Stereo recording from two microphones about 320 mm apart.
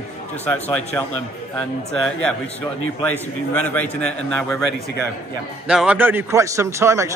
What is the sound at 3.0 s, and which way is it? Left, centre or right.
A man's voice, centre.